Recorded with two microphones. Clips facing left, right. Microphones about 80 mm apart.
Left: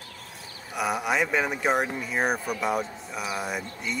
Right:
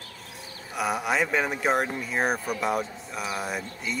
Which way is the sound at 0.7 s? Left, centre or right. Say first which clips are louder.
Even; centre.